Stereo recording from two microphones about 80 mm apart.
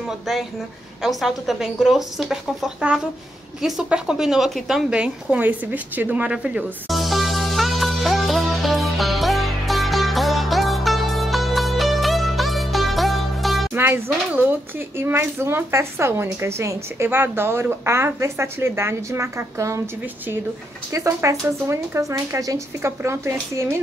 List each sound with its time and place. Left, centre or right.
1.0 s a woman's voice: centre
6.9 s music: centre
13.7 s speech: right
20.9 s speech: right
22.8 s speech: right